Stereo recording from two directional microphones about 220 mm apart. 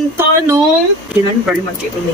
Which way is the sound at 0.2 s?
10° right (ahead or behind).